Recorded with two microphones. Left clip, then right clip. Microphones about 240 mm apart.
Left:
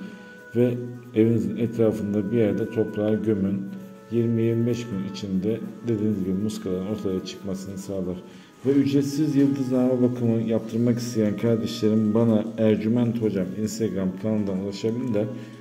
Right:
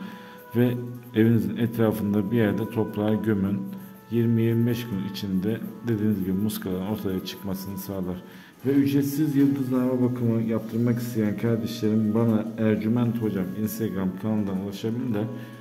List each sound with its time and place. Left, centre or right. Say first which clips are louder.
0.6 s speech: left 2 dB; right
8.8 s a man's voice: left 1 dB; centre